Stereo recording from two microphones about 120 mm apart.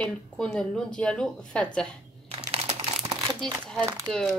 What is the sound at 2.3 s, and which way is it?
Computer keyboard, 55° right (ahead or behind).